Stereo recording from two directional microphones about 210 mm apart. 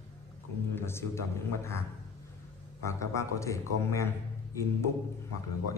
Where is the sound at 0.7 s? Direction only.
10° left (ahead or behind).